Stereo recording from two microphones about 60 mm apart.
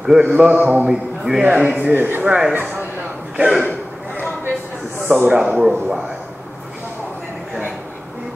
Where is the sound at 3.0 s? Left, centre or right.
Centre.